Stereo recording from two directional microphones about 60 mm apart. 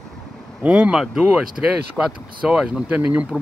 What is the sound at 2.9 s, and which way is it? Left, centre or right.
Speech, right.